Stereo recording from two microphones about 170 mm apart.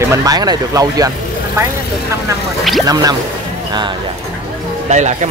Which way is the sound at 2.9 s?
20° right (ahead or behind).